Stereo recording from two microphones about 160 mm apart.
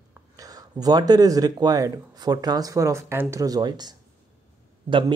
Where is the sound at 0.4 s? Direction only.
25° right (ahead or behind).